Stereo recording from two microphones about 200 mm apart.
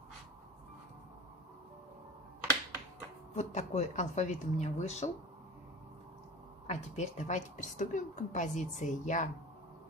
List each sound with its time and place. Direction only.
3.3 s a woman's voice: 35° left (ahead or behind)
6.7 s a woman's voice: 35° left (ahead or behind)